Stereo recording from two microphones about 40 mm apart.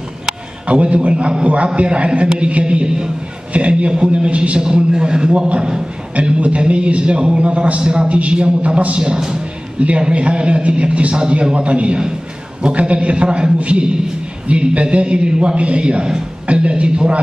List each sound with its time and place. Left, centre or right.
0.7 s a man's voice: right
6.4 s a man's voice: right
9.8 s a man's voice: right
11.1 s a man's voice: centre
16.4 s a man's voice: right